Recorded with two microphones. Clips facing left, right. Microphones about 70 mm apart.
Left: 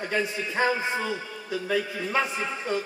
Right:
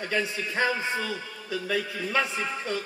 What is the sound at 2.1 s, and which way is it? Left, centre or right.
Speech, centre.